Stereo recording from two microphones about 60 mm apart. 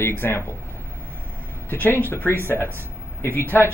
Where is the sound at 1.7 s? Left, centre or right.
Left.